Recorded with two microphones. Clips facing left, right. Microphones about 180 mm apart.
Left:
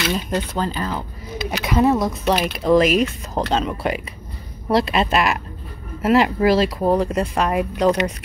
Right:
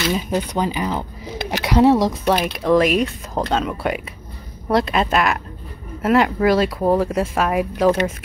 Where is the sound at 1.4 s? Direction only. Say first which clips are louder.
Right 3 dB; 80° right.